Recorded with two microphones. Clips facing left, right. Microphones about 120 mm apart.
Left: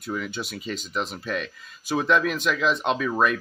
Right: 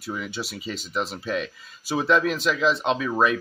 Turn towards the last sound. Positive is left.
turn(degrees=0)  # may be behind; listen again after turning